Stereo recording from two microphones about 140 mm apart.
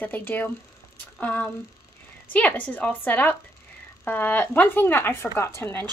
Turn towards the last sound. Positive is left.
turn(degrees=15)  # may be behind; listen again after turning